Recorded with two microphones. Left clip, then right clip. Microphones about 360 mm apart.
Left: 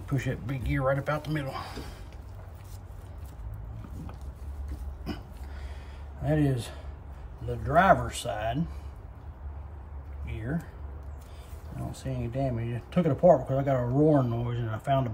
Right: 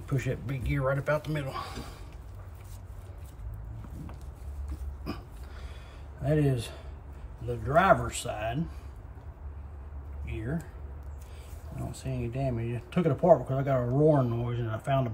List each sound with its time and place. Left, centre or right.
0.1 s speech: centre
6.2 s speech: centre
10.2 s speech: centre
11.9 s speech: centre